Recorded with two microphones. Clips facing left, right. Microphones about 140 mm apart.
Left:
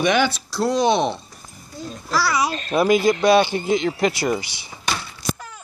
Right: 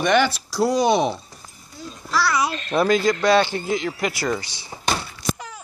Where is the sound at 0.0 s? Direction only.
Centre (ahead or behind).